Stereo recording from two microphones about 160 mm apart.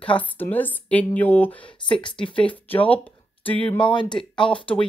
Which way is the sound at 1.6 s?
30° left (ahead or behind).